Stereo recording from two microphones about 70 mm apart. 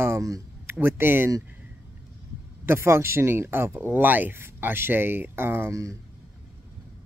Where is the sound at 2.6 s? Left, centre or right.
Right.